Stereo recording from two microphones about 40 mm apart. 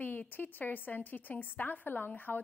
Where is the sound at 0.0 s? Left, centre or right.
Left.